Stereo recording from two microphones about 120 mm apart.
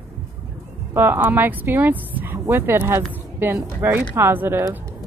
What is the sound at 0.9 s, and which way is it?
A woman's voice, 20° right (ahead or behind).